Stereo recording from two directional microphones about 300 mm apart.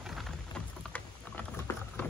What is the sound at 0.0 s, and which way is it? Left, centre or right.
Rain, centre.